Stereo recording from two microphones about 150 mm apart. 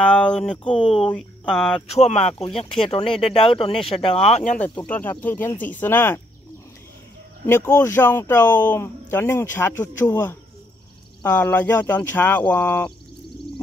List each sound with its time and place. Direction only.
0.0 s speech: 5° left (ahead or behind)
1.9 s speech: 45° left (ahead or behind)
4.6 s speech: 10° left (ahead or behind)
7.4 s speech: 15° left (ahead or behind)